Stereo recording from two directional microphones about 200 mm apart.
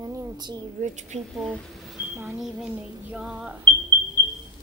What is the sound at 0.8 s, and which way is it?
Speech, 35° right (ahead or behind).